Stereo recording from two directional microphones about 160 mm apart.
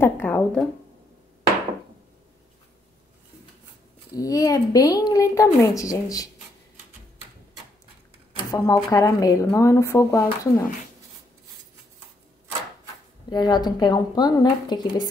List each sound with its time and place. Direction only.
0.0 s speech: 10° left (ahead or behind)
4.2 s speech: 20° left (ahead or behind)
8.4 s speech: 20° left (ahead or behind)
13.3 s speech: 25° left (ahead or behind)